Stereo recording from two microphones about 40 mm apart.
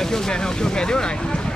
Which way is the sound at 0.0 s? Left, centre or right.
Centre.